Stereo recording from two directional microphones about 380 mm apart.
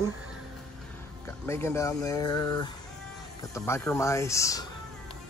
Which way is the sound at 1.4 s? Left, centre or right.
Centre.